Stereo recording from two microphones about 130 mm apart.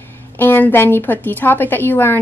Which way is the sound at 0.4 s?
15° left (ahead or behind).